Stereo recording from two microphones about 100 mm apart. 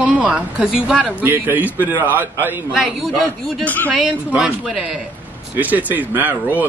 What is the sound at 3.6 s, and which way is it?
Speech, 15° left (ahead or behind).